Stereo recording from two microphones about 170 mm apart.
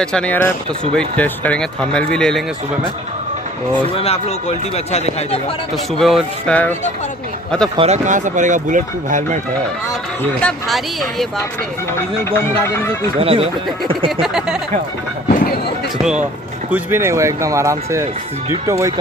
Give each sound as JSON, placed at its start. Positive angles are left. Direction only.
{"t": 0.0, "sound": "speech", "side_deg": 5}
{"t": 3.9, "sound": "a man's voice", "side_deg": 35}
{"t": 5.9, "sound": "speech", "side_deg": 0}
{"t": 7.7, "sound": "speech", "side_deg": -40}
{"t": 10.4, "sound": "speech", "side_deg": 0}
{"t": 12.6, "sound": "speech", "side_deg": 15}
{"t": 13.2, "sound": "speech", "side_deg": -35}
{"t": 14.2, "sound": "speech", "side_deg": -5}
{"t": 15.2, "sound": "a sound", "side_deg": 65}
{"t": 16.7, "sound": "speech", "side_deg": -15}